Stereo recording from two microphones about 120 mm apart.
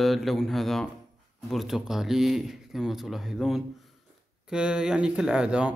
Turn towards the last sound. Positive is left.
turn(degrees=-10)  # may be behind; listen again after turning